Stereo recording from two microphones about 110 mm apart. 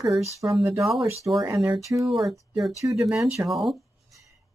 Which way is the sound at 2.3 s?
Centre (ahead or behind).